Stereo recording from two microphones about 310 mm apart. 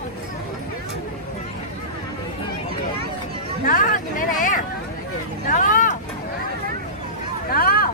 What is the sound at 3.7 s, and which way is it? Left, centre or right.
Hubbub, left.